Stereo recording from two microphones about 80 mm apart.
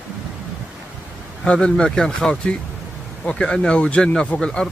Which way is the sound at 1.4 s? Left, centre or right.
Centre.